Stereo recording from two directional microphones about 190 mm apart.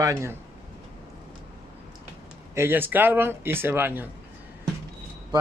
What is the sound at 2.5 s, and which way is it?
Speech, 10° right (ahead or behind).